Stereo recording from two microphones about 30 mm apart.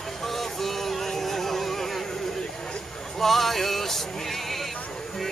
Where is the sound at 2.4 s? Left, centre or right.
Left.